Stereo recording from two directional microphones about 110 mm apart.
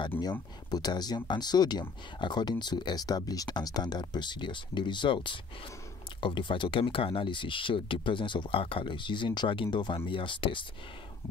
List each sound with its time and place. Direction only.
0.2 s speech: 40° left (ahead or behind)